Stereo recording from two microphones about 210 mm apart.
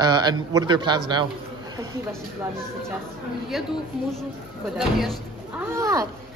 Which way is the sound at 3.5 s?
Centre (ahead or behind).